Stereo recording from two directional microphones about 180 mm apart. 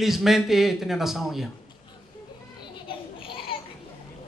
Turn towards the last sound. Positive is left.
turn(degrees=30)  # may be behind; listen again after turning